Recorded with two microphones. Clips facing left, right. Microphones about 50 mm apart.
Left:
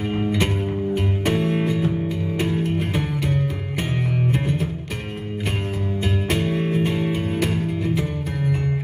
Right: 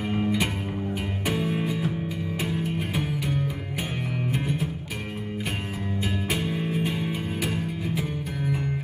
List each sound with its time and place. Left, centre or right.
0.9 s music: centre
6.7 s music: centre